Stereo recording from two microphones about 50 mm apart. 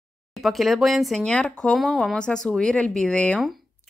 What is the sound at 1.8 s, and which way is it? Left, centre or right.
Speech, centre.